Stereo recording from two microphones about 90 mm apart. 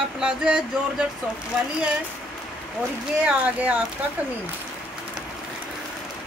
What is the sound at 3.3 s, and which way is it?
Speech, 15° right (ahead or behind).